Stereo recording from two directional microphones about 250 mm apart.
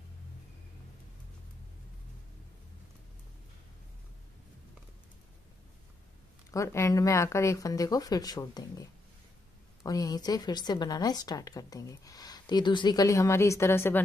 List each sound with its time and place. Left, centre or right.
6.5 s a woman's voice: centre
9.8 s a woman's voice: centre